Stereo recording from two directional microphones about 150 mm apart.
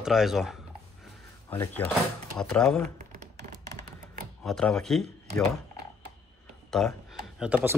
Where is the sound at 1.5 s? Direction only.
15° left (ahead or behind).